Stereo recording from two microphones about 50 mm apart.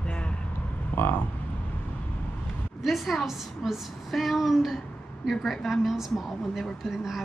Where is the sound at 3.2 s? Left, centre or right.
Centre.